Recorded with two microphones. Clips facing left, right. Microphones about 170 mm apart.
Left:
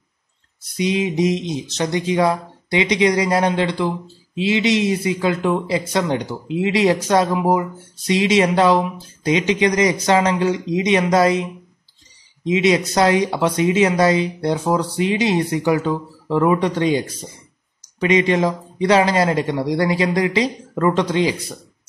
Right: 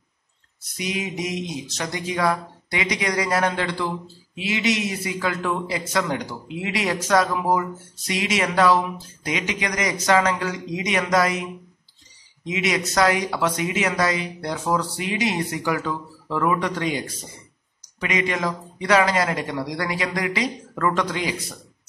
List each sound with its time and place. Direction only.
0.7 s speech: 25° left (ahead or behind)
12.4 s speech: 30° left (ahead or behind)